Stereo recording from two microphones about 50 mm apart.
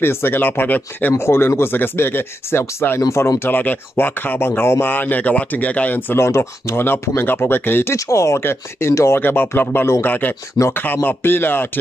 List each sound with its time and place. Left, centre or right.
0.0 s speech: left
1.1 s speech: left
3.4 s speech: left
4.5 s speech: left
4.8 s speech: left
6.1 s speech: left
7.9 s speech: left
8.4 s speech: left
9.2 s speech: left
10.0 s speech: left